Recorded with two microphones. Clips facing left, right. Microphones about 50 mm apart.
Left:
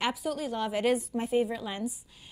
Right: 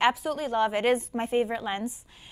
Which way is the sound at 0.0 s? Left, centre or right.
Right.